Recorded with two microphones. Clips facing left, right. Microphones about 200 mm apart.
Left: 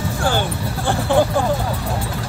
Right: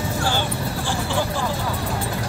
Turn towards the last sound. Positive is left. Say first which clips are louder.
# left 7 dB
turn(degrees=55)  # may be behind; listen again after turning